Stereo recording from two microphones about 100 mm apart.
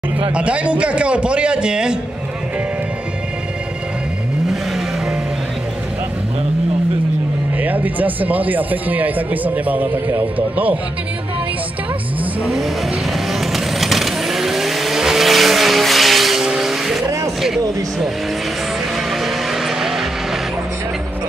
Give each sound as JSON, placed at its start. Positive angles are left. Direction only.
{"t": 0.3, "sound": "speech", "side_deg": -10}
{"t": 7.6, "sound": "speech", "side_deg": -15}
{"t": 13.3, "sound": "vehicle", "side_deg": 0}
{"t": 17.4, "sound": "speech", "side_deg": -5}
{"t": 19.2, "sound": "vehicle", "side_deg": 0}